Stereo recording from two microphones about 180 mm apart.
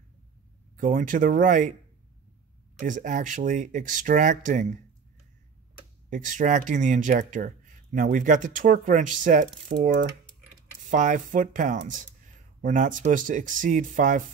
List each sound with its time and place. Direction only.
0.7 s speech: 45° right (ahead or behind)
2.8 s speech: 45° right (ahead or behind)
6.0 s speech: 45° right (ahead or behind)